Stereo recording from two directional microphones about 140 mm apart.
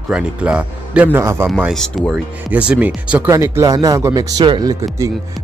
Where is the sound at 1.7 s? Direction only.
Centre (ahead or behind).